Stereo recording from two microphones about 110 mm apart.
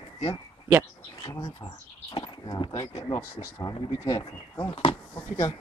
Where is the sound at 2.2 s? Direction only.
50° left (ahead or behind).